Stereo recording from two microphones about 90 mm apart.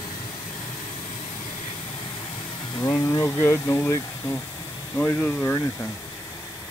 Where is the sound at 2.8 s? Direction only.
35° left (ahead or behind).